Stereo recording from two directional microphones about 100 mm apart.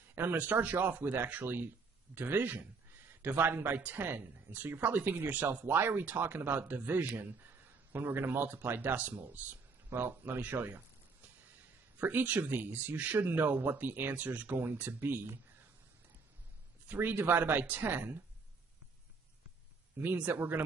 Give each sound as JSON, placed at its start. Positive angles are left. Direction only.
{"t": 0.1, "sound": "speech", "side_deg": -20}
{"t": 12.0, "sound": "speech", "side_deg": -15}
{"t": 16.8, "sound": "speech", "side_deg": -20}
{"t": 20.0, "sound": "speech", "side_deg": -20}